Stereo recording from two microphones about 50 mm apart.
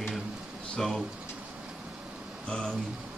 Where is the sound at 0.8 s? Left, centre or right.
Centre.